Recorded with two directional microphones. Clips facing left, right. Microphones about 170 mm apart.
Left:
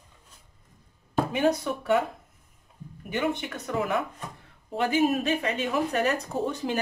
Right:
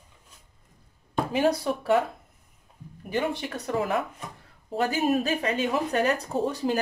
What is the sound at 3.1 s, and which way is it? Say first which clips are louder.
Speech: even; 35° right (ahead or behind).